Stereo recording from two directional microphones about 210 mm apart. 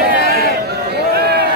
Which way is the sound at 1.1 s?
50° right (ahead or behind).